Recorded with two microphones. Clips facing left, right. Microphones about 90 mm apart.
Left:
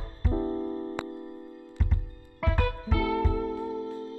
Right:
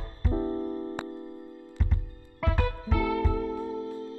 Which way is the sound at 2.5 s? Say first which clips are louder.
Left 1 dB; 20° right (ahead or behind).